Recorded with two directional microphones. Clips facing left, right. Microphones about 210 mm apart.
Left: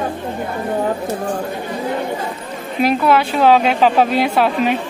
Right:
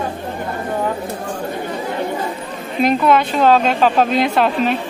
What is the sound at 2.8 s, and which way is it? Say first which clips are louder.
Speech: even; 5° left (ahead or behind).